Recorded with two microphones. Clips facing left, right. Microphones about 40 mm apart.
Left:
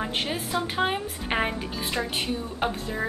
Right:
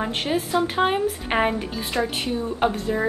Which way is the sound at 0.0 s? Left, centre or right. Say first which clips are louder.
Right 4 dB; centre.